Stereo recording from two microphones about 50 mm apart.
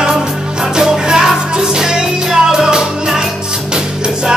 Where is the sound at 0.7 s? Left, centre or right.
Centre.